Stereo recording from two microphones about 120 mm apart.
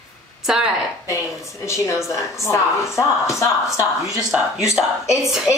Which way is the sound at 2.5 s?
25° left (ahead or behind).